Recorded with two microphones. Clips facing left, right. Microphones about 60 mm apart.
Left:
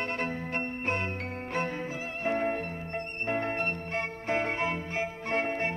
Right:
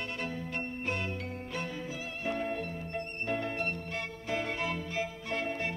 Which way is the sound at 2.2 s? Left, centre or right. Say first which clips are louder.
Left 5 dB; left.